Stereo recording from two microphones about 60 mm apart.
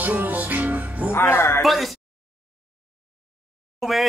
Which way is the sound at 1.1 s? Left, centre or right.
Left.